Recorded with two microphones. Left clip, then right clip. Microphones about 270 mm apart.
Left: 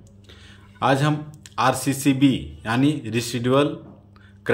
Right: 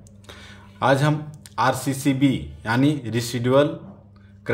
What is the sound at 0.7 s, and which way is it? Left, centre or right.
Speech, centre.